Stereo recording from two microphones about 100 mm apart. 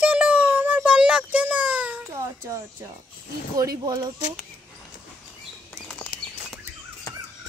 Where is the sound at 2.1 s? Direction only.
30° right (ahead or behind).